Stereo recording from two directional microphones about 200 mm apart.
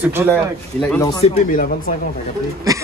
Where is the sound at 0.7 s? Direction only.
5° left (ahead or behind).